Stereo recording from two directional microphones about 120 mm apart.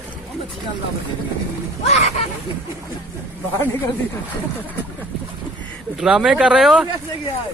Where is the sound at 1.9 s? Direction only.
65° left (ahead or behind).